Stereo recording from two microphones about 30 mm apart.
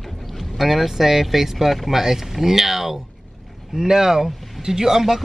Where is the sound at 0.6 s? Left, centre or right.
Centre.